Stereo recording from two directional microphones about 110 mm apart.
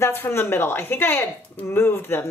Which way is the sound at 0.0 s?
20° left (ahead or behind).